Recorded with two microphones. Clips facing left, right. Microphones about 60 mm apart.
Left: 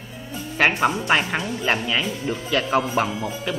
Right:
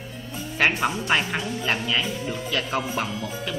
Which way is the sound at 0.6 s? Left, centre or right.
Centre.